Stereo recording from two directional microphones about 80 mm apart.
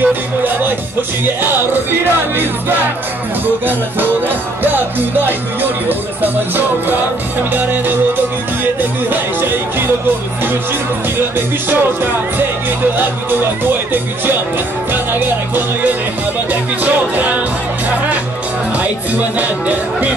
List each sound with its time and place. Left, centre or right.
0.0 s music: right
9.1 s music: right
11.3 s music: right
18.8 s music: centre